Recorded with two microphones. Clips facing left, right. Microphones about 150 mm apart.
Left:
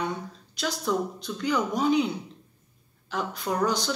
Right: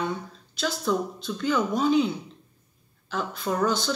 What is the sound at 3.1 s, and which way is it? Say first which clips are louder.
Speech: right 1 dB; 15° left (ahead or behind).